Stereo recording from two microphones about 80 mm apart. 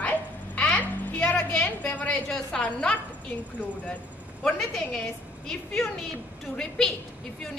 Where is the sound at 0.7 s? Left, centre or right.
Centre.